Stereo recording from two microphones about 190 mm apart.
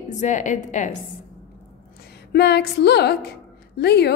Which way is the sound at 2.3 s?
60° left (ahead or behind).